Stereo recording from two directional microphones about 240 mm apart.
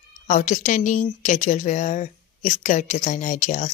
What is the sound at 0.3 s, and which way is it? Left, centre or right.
Speech, left.